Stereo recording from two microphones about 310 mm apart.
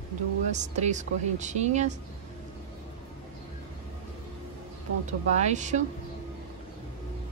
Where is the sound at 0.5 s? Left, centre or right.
Right.